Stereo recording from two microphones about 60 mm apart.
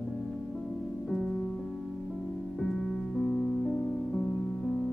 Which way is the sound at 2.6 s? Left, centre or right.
Centre.